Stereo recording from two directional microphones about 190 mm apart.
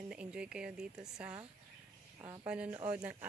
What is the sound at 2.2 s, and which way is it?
Speech, 15° right (ahead or behind).